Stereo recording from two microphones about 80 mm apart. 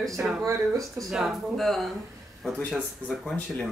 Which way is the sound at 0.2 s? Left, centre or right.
Right.